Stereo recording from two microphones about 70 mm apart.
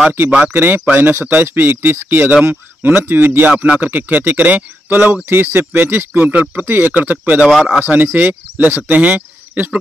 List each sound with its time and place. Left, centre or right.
0.5 s speech: right
7.4 s a man's voice: centre
7.9 s speech: right